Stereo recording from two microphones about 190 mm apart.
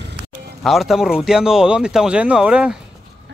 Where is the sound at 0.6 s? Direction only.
Centre (ahead or behind).